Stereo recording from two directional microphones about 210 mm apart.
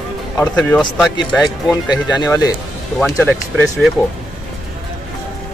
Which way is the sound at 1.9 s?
20° left (ahead or behind).